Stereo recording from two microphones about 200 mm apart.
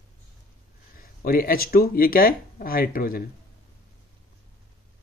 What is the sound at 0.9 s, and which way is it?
Speech, 45° left (ahead or behind).